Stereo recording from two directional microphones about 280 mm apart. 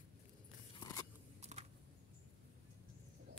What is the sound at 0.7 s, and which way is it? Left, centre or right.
Biting, centre.